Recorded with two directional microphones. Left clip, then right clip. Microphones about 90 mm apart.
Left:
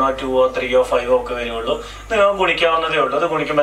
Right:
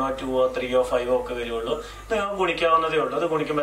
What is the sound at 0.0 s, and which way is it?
Speech, 10° right (ahead or behind).